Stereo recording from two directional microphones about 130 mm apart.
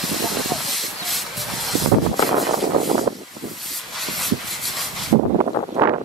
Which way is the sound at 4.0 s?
Centre (ahead or behind).